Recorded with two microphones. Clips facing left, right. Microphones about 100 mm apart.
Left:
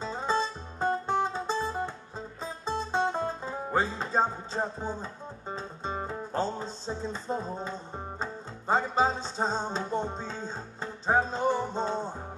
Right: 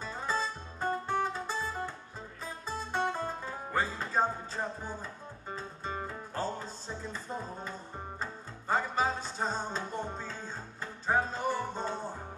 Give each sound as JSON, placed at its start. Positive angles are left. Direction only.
{"t": 0.0, "sound": "music", "side_deg": 25}